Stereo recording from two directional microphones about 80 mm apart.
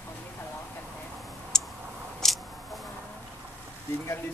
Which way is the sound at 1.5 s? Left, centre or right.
Centre.